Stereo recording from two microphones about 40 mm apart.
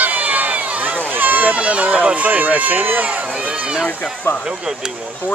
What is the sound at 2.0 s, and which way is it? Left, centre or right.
Speech, right.